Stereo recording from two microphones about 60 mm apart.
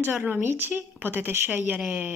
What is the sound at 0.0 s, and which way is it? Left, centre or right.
Speech, right.